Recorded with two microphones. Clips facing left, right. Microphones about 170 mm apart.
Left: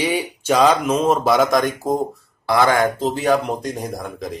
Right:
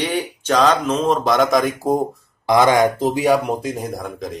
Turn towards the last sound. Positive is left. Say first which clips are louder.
# right 1 dB
turn(degrees=0)  # may be behind; listen again after turning